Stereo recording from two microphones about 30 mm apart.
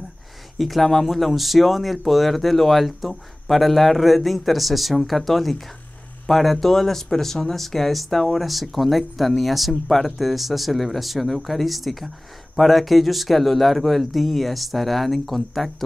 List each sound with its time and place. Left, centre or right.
0.6 s speech: centre